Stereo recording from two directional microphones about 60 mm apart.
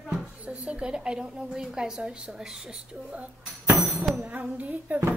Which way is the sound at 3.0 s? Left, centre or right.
Right.